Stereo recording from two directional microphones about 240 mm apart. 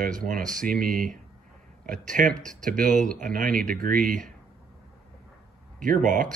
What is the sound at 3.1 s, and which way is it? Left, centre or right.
Speech, right.